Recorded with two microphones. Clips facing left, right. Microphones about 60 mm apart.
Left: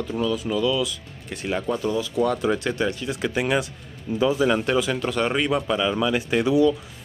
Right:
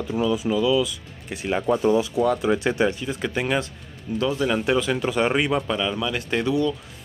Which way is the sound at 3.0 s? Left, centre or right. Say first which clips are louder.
Left 1 dB; centre.